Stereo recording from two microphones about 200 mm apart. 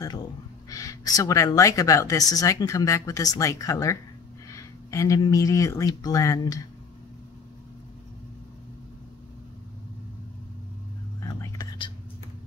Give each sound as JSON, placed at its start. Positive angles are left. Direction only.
{"t": 0.7, "sound": "a woman's voice", "side_deg": 15}
{"t": 11.2, "sound": "whispering", "side_deg": 20}